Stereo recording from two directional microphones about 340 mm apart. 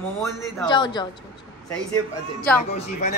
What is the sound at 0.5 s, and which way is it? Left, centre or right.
Speech, centre.